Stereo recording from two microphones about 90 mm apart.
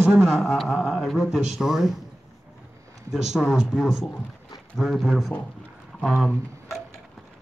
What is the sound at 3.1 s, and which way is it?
Speech, 5° right (ahead or behind).